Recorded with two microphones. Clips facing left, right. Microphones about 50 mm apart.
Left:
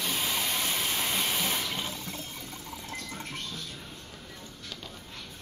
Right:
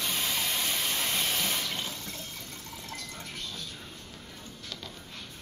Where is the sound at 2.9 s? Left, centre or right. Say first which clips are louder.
Left 3 dB; left.